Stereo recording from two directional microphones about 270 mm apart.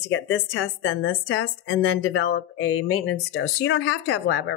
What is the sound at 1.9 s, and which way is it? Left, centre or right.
Speech, left.